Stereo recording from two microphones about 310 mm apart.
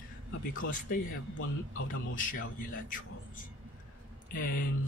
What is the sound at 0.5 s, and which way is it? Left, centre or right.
Speech, left.